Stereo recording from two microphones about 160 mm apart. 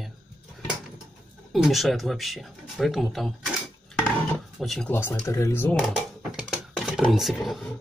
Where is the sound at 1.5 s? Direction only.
Centre (ahead or behind).